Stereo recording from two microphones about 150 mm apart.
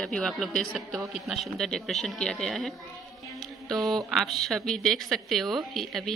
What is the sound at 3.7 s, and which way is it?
A woman's voice, centre (ahead or behind).